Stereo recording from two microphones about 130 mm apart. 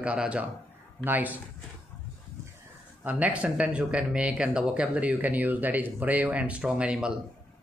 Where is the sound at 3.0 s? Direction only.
10° right (ahead or behind).